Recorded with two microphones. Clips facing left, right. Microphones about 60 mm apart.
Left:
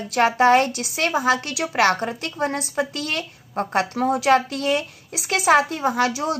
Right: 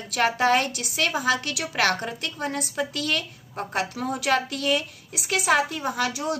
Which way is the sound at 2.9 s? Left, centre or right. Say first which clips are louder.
Even; left.